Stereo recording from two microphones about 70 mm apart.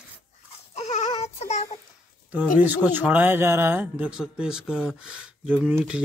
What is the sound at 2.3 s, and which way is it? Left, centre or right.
Speech, right.